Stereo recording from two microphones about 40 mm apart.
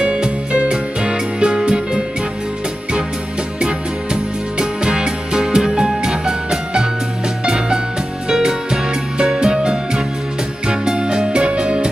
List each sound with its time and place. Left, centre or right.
0.0 s music: right
3.6 s music: centre